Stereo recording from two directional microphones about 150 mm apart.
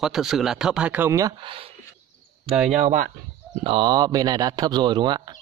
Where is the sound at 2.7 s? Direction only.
50° right (ahead or behind).